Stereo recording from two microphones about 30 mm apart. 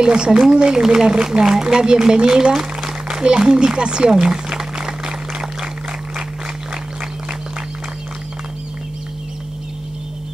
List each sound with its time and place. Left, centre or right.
0.0 s speech: right
4.1 s speech: centre
4.7 s a sound: right